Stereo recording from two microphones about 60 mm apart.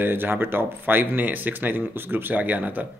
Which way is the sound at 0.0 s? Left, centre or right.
Right.